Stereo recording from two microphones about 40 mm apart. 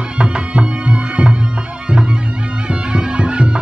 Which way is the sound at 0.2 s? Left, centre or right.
Right.